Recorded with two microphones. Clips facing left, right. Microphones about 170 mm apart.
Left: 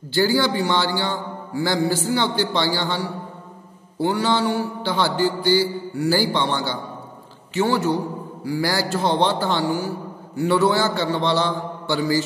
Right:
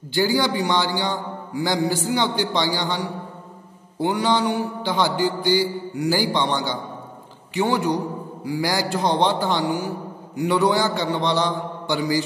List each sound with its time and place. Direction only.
0.1 s a man's voice: 15° right (ahead or behind)